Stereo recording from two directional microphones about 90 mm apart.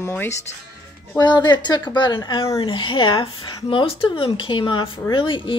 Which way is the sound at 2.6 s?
75° left (ahead or behind).